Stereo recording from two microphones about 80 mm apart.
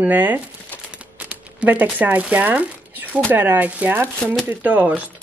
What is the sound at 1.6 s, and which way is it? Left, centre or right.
Speech, right.